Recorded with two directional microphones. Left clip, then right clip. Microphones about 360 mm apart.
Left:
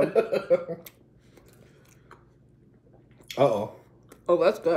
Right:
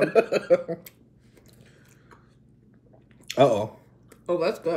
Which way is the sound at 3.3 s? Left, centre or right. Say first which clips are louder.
Right 3 dB; right.